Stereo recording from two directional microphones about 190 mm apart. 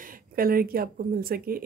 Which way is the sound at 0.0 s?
50° right (ahead or behind).